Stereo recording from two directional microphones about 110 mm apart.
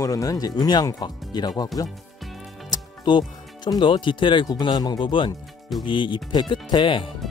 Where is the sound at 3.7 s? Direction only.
45° left (ahead or behind).